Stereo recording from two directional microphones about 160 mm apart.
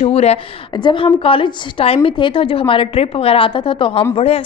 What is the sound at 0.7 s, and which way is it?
A woman's voice, 30° left (ahead or behind).